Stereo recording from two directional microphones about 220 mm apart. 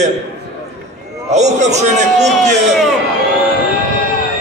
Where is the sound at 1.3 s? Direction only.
30° right (ahead or behind).